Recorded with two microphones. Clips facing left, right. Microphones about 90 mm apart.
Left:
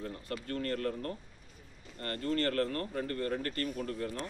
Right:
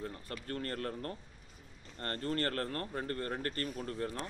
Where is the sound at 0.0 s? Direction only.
30° right (ahead or behind).